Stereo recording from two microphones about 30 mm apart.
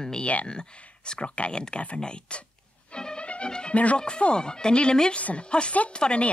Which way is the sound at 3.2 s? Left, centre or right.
Left.